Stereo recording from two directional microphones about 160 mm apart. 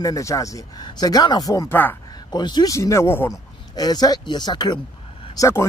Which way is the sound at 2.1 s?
25° left (ahead or behind).